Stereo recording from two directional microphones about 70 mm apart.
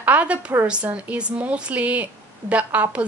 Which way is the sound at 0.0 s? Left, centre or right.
Right.